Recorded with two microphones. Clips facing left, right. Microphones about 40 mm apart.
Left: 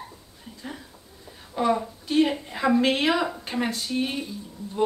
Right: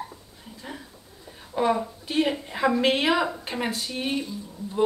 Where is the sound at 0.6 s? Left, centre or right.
Centre.